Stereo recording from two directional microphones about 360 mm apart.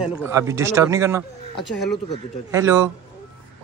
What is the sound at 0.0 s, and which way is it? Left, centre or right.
Speech, centre.